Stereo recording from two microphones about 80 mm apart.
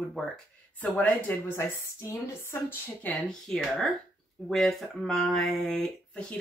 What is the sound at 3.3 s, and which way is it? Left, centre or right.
Speech, centre.